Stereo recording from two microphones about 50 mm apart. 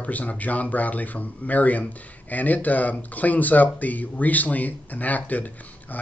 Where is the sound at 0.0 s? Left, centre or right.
Left.